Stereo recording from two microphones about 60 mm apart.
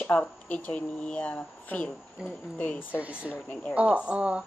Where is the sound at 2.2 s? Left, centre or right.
Centre.